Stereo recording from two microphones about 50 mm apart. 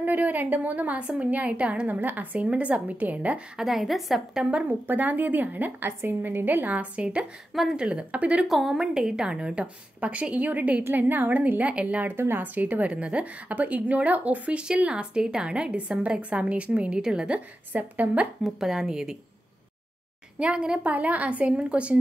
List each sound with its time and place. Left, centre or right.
0.0 s a woman's voice: right
3.5 s a woman's voice: centre
4.6 s speech: right
5.9 s a woman's voice: right
6.2 s a woman's voice: right
8.5 s a woman's voice: centre
8.7 s a woman's voice: centre; by 10.8 s right
10.8 s a woman's voice: right
12.2 s speech: right
12.5 s a woman's voice: right; by 17.4 s centre
17.7 s speech: right
18.6 s a woman's voice: centre
20.3 s a woman's voice: right
20.8 s a woman's voice: right